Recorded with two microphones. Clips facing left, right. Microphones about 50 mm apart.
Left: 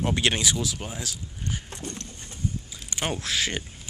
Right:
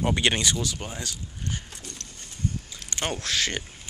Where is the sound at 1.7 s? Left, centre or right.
Left.